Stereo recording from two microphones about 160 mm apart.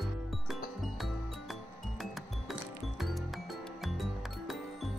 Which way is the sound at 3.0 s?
Centre (ahead or behind).